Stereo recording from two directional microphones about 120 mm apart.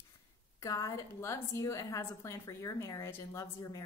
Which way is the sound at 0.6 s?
30° left (ahead or behind).